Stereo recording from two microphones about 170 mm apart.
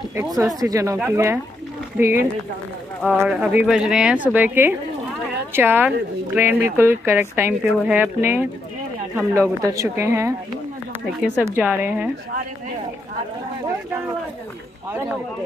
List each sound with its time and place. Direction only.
0.1 s speech: 20° right (ahead or behind)
11.3 s speech: 10° right (ahead or behind)